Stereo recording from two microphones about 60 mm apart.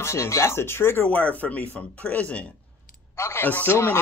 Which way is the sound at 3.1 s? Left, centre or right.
Left.